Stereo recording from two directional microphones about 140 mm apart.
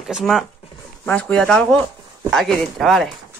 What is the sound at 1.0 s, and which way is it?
Speech, 10° left (ahead or behind).